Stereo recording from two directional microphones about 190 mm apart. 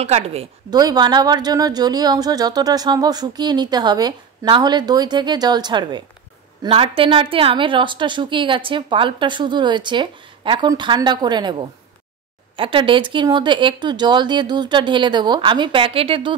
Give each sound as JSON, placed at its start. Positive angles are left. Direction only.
{"t": 0.0, "sound": "speech", "side_deg": -35}
{"t": 12.5, "sound": "speech", "side_deg": -25}